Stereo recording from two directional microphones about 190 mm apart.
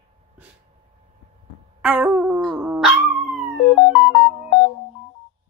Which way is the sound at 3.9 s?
10° left (ahead or behind).